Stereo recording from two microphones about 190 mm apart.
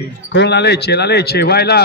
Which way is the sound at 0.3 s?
65° left (ahead or behind).